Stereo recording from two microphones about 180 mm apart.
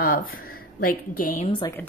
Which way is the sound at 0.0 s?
55° left (ahead or behind).